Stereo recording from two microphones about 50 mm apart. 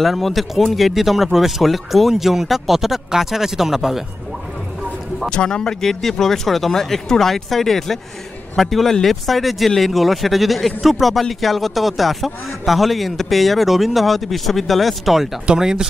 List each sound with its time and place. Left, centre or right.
0.0 s speech: centre
5.3 s speech: centre
15.4 s speech: centre